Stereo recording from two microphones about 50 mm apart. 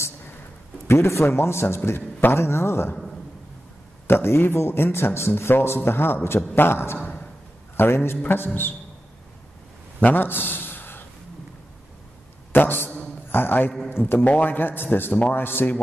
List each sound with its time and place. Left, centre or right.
0.8 s a man's voice: left
1.9 s a man's voice: left
4.1 s a man's voice: left
9.9 s a sound: left
12.5 s a man's voice: left
14.2 s a man's voice: left